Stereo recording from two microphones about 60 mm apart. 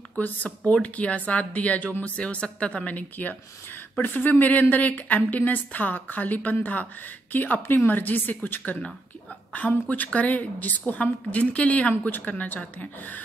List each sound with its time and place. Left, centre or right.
0.2 s a woman's voice: left